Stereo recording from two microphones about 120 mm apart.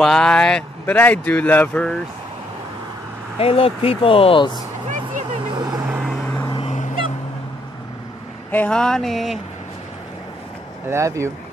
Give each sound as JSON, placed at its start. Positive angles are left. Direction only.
{"t": 0.0, "sound": "speech", "side_deg": 5}
{"t": 3.3, "sound": "speech", "side_deg": 55}
{"t": 4.8, "sound": "vehicle", "side_deg": -90}
{"t": 5.7, "sound": "vehicle", "side_deg": -5}
{"t": 8.5, "sound": "speech", "side_deg": 10}
{"t": 10.9, "sound": "speech", "side_deg": -25}